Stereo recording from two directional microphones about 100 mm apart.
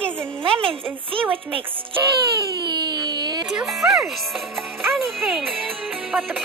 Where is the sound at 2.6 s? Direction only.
45° right (ahead or behind).